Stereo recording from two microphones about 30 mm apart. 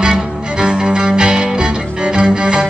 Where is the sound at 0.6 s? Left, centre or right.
Right.